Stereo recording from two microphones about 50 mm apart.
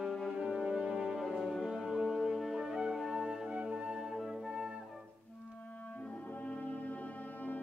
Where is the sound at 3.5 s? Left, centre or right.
Right.